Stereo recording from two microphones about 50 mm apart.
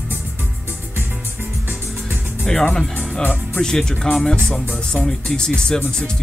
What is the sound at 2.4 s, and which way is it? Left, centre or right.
Music, centre.